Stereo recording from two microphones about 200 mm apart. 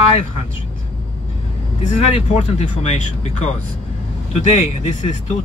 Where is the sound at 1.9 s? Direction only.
35° left (ahead or behind).